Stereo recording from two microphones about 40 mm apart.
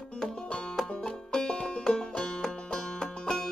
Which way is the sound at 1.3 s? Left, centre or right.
Centre.